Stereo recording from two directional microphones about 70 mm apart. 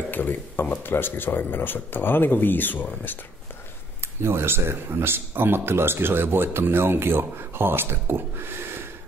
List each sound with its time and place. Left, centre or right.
0.1 s speech: left
4.2 s speech: right